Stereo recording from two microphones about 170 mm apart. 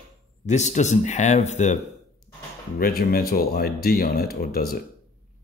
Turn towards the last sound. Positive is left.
turn(degrees=60)  # may be behind; listen again after turning